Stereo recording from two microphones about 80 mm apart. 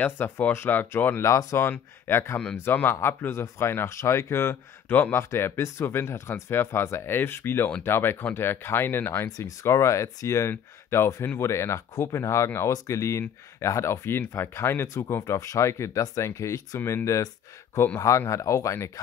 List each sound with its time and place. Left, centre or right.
0.0 s speech: left
1.2 s speech: left
1.7 s speech: left
15.3 s speech: left